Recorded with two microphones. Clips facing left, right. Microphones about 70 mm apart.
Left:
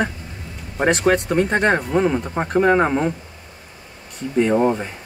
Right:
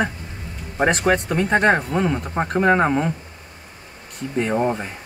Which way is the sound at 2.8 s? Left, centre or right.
Centre.